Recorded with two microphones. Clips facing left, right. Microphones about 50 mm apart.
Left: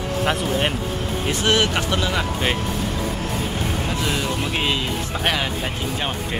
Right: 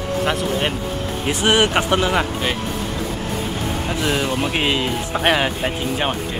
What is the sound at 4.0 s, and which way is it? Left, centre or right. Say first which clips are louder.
Speech: right 6 dB; centre.